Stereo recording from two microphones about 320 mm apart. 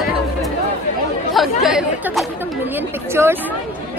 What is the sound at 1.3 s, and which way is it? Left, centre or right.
Chatter, centre.